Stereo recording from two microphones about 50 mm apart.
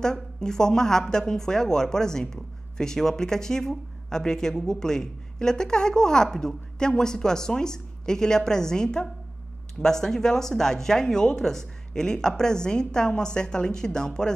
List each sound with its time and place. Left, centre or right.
0.0 s a woman's voice: centre